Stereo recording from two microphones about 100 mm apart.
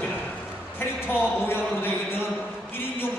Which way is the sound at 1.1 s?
20° left (ahead or behind).